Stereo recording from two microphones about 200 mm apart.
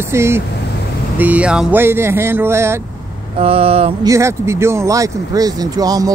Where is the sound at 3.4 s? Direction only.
30° right (ahead or behind).